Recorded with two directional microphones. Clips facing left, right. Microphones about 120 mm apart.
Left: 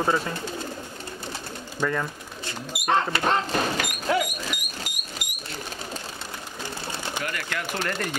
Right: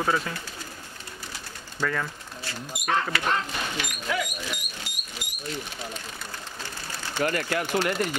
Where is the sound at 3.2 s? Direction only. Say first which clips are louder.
Left 4 dB; 40° left (ahead or behind).